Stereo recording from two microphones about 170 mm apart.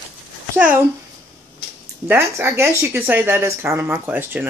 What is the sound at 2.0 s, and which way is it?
Speech, 15° right (ahead or behind).